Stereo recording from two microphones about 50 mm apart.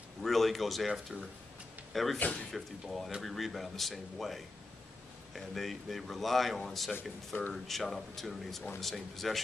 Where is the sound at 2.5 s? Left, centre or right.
Centre.